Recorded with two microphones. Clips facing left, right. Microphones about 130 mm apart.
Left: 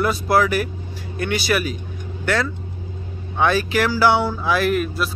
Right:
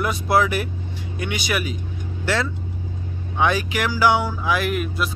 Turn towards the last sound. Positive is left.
turn(degrees=-15)  # may be behind; listen again after turning